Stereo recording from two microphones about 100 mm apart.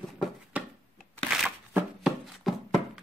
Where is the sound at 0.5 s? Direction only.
15° right (ahead or behind).